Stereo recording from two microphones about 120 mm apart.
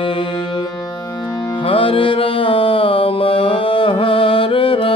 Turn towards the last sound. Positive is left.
turn(degrees=45)  # may be behind; listen again after turning